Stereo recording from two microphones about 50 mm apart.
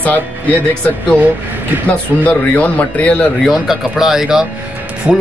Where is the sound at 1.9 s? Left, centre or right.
Left.